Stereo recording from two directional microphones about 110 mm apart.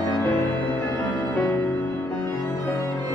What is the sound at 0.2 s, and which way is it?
Music, 20° left (ahead or behind).